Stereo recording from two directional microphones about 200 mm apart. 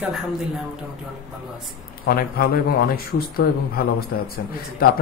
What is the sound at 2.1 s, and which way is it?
Speech, 45° left (ahead or behind).